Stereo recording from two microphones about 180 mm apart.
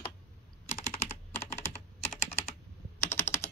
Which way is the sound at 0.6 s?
40° left (ahead or behind).